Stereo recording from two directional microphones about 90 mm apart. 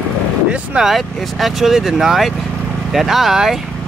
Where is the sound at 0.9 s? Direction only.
Centre (ahead or behind).